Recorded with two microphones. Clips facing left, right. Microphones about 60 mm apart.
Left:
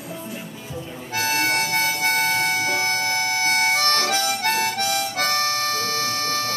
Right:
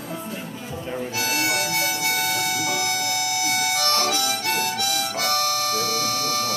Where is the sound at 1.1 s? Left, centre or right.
Left.